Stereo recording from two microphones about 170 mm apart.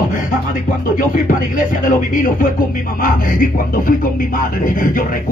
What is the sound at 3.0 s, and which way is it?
Speech, 55° left (ahead or behind).